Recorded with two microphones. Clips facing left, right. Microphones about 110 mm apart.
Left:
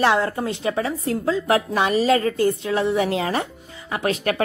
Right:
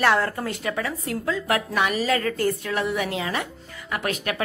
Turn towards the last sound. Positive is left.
turn(degrees=30)  # may be behind; listen again after turning